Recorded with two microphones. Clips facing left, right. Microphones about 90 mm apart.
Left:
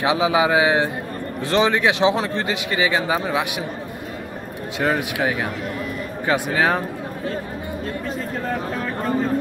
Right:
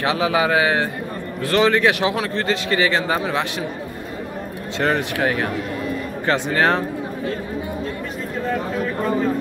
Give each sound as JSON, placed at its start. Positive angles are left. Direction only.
{"t": 0.0, "sound": "a man's voice", "side_deg": 15}
{"t": 4.7, "sound": "a man's voice", "side_deg": 10}